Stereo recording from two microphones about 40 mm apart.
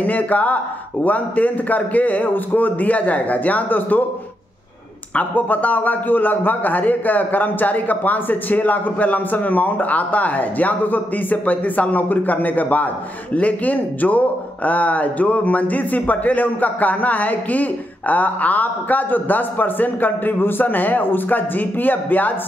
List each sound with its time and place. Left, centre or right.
0.0 s a man's voice: left
5.1 s a man's voice: left